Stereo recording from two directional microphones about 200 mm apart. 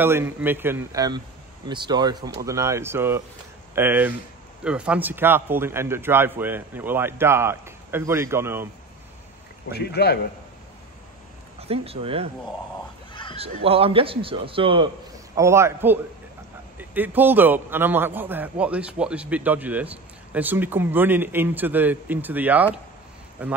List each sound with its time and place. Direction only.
0.0 s a man's voice: 10° right (ahead or behind)
9.7 s a man's voice: 55° left (ahead or behind)
11.6 s a man's voice: 30° right (ahead or behind)
13.1 s a sound: 25° left (ahead or behind)
13.7 s a man's voice: 30° right (ahead or behind)
15.3 s a man's voice: 15° right (ahead or behind)